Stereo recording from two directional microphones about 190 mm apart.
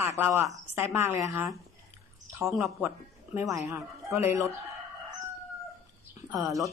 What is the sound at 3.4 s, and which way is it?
Speech, 15° right (ahead or behind).